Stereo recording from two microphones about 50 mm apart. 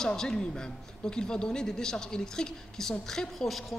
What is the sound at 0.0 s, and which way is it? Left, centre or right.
A woman's voice, centre.